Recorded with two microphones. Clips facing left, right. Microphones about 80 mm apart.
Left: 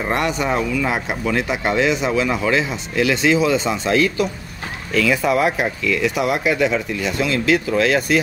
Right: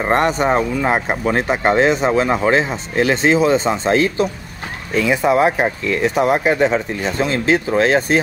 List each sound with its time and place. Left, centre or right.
0.0 s speech: right